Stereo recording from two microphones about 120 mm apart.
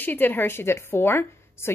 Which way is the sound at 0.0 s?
15° left (ahead or behind).